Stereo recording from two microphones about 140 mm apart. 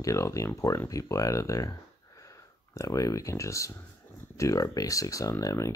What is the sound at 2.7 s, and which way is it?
Speech, 25° left (ahead or behind).